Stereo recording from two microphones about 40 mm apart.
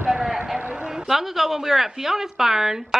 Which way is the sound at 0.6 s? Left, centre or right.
Right.